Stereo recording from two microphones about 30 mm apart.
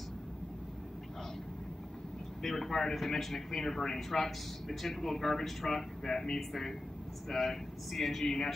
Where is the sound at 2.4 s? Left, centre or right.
Centre.